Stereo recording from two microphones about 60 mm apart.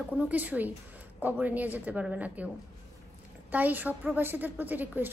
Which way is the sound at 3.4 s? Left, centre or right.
Right.